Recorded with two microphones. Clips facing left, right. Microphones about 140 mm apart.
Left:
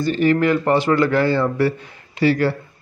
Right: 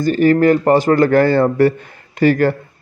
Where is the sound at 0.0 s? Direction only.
45° right (ahead or behind).